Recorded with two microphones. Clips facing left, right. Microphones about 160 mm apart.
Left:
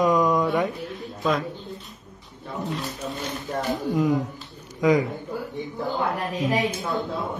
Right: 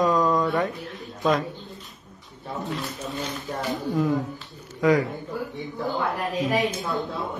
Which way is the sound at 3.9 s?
20° left (ahead or behind).